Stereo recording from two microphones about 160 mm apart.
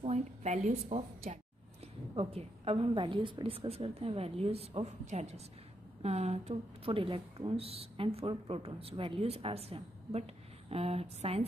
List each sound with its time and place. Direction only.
0.0 s a woman's voice: 45° right (ahead or behind)